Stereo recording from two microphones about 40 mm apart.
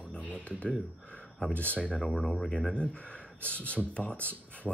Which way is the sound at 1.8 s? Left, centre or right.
Left.